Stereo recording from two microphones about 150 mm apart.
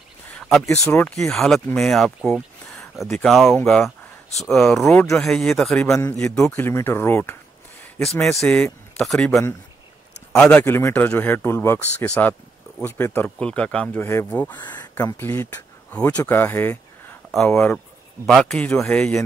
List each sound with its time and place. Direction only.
0.4 s a sound: centre (ahead or behind)
0.8 s speech: 15° left (ahead or behind)
1.3 s a man's voice: centre (ahead or behind)
8.0 s a man's voice: centre (ahead or behind)
14.6 s speech: 30° left (ahead or behind)
15.0 s speech: 15° left (ahead or behind)
17.3 s a man's voice: 5° left (ahead or behind)